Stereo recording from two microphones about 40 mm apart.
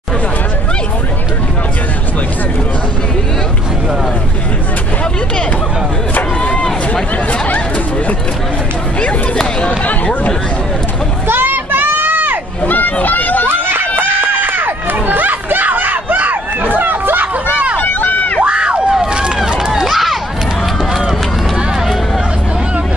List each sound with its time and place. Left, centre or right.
9.6 s a sound: left
11.2 s a sound: right
12.6 s a sound: left
13.0 s run: left
13.5 s run: right
17.7 s run: left
18.4 s crowd: right
18.9 s run: centre
19.8 s run: centre